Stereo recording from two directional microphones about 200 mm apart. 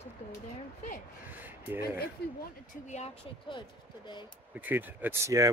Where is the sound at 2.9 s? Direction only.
35° left (ahead or behind).